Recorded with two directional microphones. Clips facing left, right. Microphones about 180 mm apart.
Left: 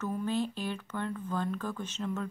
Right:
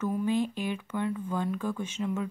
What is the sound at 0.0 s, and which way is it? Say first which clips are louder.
Speech: right 4 dB; 10° right (ahead or behind).